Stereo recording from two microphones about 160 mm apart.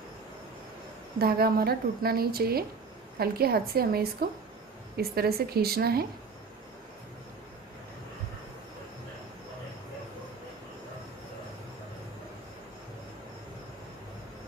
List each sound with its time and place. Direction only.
1.2 s a woman's voice: 75° right (ahead or behind)